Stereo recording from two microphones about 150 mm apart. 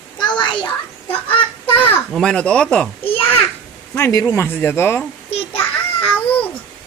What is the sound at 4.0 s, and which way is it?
Speech, 20° left (ahead or behind).